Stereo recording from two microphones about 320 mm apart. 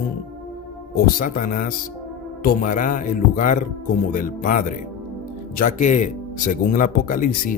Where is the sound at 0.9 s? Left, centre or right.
Left.